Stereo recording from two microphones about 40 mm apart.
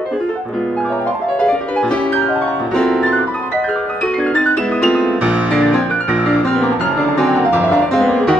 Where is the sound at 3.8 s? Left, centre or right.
Left.